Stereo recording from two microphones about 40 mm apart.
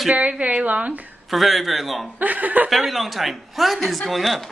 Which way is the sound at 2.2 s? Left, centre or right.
Right.